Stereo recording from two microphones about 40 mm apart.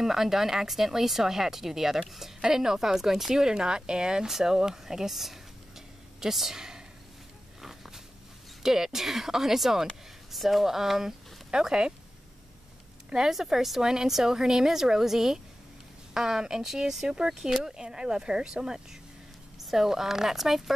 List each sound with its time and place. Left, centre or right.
0.0 s speech: centre
7.6 s a sound: centre
8.6 s speech: centre
11.5 s a woman's voice: right
13.3 s a woman's voice: centre